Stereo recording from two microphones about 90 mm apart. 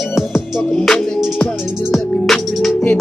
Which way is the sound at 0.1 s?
5° left (ahead or behind).